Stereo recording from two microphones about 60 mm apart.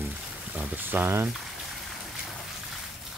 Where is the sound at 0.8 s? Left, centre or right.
Right.